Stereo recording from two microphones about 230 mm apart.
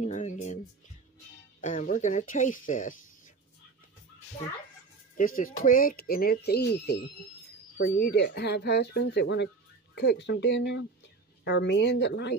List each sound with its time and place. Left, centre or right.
0.0 s a sound: left
1.6 s speech: left
5.1 s speech: left